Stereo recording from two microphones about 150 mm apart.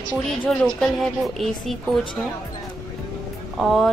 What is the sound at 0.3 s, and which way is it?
A woman's voice, 5° left (ahead or behind).